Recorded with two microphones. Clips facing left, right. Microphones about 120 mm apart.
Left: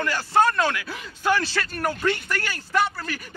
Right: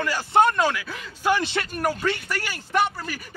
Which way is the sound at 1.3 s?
20° right (ahead or behind).